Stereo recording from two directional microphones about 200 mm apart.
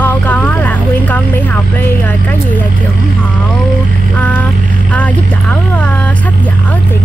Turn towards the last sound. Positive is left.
turn(degrees=5)  # may be behind; listen again after turning